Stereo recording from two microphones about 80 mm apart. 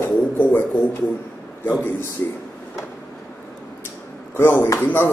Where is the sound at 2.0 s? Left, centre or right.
Left.